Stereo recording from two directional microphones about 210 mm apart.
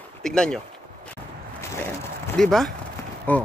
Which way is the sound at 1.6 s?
10° left (ahead or behind).